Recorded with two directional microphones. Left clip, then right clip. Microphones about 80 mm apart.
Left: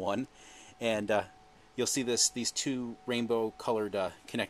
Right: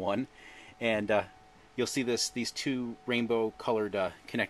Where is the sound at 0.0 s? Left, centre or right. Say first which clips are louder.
Right 1 dB; centre.